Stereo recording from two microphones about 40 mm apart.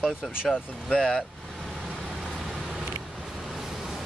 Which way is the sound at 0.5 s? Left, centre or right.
Centre.